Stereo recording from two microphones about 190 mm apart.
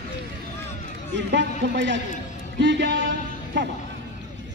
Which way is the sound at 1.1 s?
70° right (ahead or behind).